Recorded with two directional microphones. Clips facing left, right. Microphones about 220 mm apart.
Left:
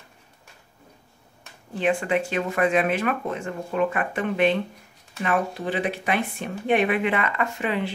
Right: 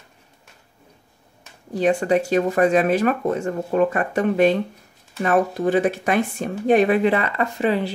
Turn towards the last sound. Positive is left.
turn(degrees=-35)  # may be behind; listen again after turning